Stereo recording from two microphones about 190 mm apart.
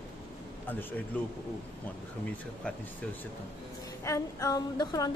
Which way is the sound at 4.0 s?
15° left (ahead or behind).